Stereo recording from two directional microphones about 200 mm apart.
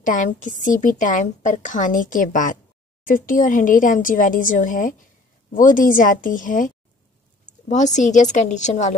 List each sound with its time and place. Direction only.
0.0 s speech: 40° left (ahead or behind)